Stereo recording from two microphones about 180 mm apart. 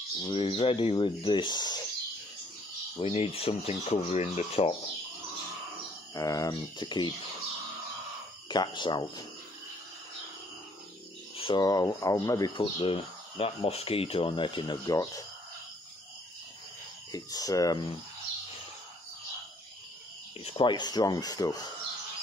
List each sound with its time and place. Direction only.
0.2 s speech: 30° left (ahead or behind)
3.0 s speech: 35° left (ahead or behind)
6.1 s speech: 20° left (ahead or behind)
8.5 s speech: 25° left (ahead or behind)
11.3 s speech: 25° left (ahead or behind)
17.1 s speech: 20° left (ahead or behind)
20.3 s speech: 30° left (ahead or behind)